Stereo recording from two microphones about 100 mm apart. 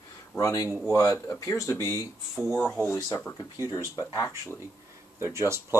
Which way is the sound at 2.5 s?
20° left (ahead or behind).